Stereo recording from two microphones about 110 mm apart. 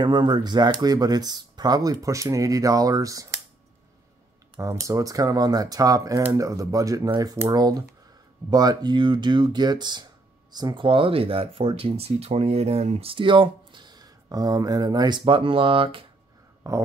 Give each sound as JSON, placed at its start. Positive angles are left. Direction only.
{"t": 0.0, "sound": "speech", "side_deg": -40}
{"t": 4.6, "sound": "speech", "side_deg": -30}
{"t": 16.6, "sound": "speech", "side_deg": -30}